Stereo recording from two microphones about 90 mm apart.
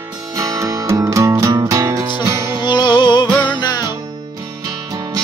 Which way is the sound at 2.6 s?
55° left (ahead or behind).